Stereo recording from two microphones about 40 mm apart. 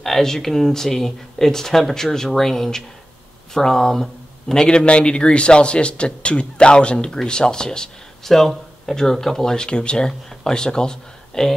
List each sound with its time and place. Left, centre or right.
0.0 s speech: centre
4.6 s a man's voice: left
8.3 s speech: centre